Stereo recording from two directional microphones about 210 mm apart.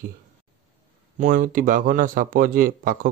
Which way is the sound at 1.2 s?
40° right (ahead or behind).